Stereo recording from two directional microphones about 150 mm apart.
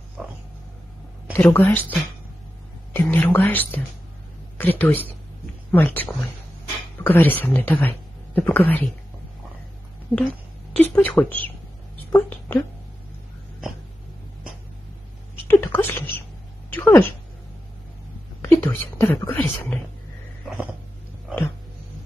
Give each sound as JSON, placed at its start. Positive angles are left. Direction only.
{"t": 1.3, "sound": "speech", "side_deg": 10}
{"t": 2.9, "sound": "a sound", "side_deg": 10}
{"t": 4.6, "sound": "speech", "side_deg": 10}
{"t": 10.1, "sound": "a woman's voice", "side_deg": 10}
{"t": 15.4, "sound": "a sound", "side_deg": 15}
{"t": 18.4, "sound": "a woman's voice", "side_deg": 15}
{"t": 20.4, "sound": "dog", "side_deg": -5}